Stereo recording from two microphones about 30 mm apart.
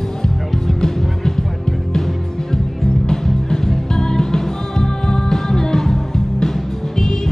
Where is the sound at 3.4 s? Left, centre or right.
Centre.